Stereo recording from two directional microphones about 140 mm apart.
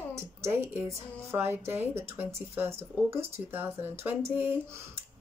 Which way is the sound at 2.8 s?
45° right (ahead or behind).